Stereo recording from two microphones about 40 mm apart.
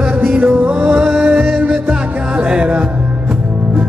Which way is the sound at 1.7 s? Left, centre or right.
Right.